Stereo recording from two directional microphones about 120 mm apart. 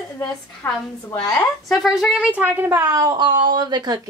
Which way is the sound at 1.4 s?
Centre (ahead or behind).